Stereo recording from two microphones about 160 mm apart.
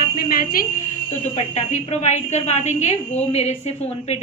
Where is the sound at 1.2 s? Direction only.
45° left (ahead or behind).